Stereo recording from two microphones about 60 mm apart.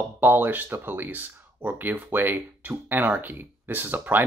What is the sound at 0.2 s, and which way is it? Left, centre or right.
Speech, right.